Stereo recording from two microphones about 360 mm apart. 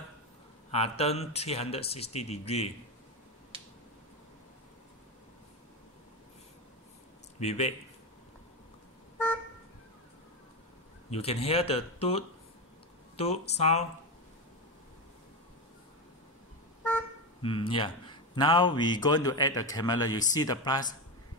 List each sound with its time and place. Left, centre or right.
0.7 s a man's voice: centre
7.3 s speech: centre
11.1 s a man's voice: centre
17.4 s a man's voice: centre